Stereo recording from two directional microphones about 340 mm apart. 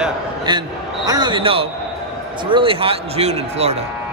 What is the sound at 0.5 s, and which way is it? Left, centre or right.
A man's voice, centre.